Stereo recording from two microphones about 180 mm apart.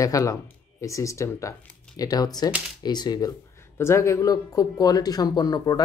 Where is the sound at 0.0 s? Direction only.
20° left (ahead or behind).